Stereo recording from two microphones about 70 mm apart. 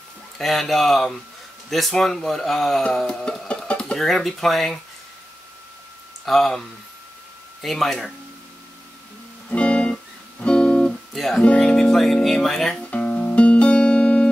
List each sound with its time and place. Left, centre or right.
0.4 s speech: centre
6.2 s speech: centre
7.6 s speech: centre
9.5 s music: centre
10.4 s guitar: centre
11.1 s speech: centre
11.4 s speech: centre
12.9 s music: centre